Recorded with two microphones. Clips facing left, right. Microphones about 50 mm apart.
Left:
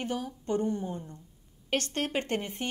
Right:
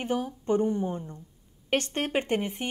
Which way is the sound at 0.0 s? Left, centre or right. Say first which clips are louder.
Right 4 dB; right.